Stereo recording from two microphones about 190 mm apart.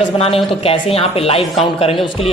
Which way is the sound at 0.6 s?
30° left (ahead or behind).